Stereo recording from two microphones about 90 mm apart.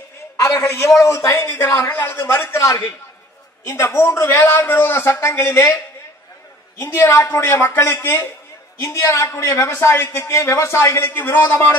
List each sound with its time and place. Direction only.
0.4 s a man's voice: 30° left (ahead or behind)
6.8 s a man's voice: 30° left (ahead or behind)